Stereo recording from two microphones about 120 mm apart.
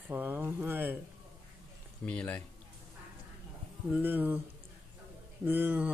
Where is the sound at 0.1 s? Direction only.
15° right (ahead or behind).